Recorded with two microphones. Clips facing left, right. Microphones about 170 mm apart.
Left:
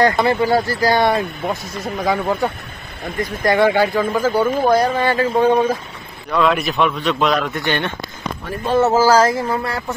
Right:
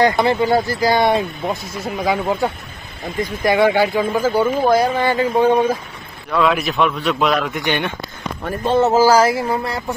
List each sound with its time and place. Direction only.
0.0 s a man's voice: 15° right (ahead or behind)
7.5 s speech: 15° right (ahead or behind)